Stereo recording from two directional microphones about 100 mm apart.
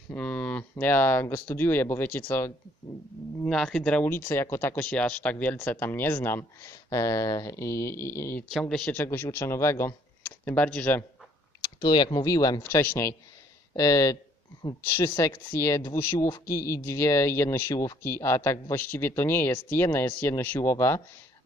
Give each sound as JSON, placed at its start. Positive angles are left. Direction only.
{"t": 0.1, "sound": "speech", "side_deg": 15}
{"t": 3.4, "sound": "speech", "side_deg": 5}
{"t": 4.1, "sound": "speech", "side_deg": 20}
{"t": 8.5, "sound": "speech", "side_deg": 0}
{"t": 8.9, "sound": "speech", "side_deg": 20}
{"t": 11.6, "sound": "speech", "side_deg": 50}
{"t": 12.3, "sound": "speech", "side_deg": 35}
{"t": 12.6, "sound": "speech", "side_deg": 20}
{"t": 13.7, "sound": "speech", "side_deg": 35}
{"t": 15.2, "sound": "speech", "side_deg": 30}